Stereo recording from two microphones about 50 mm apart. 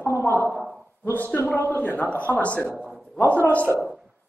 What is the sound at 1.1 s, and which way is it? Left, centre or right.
A woman's voice, left.